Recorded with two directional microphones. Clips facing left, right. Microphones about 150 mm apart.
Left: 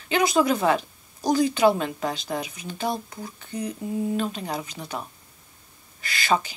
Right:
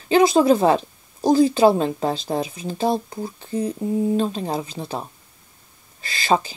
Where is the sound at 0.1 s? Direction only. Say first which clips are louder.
Right 6 dB; 30° right (ahead or behind).